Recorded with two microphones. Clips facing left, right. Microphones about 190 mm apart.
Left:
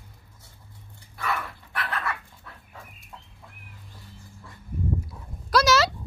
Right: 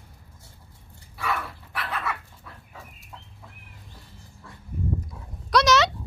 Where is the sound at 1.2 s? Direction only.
5° right (ahead or behind).